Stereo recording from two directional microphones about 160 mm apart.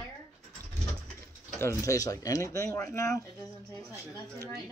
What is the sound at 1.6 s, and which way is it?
Speech, 20° left (ahead or behind).